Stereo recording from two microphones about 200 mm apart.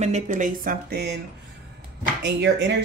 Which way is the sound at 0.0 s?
35° right (ahead or behind).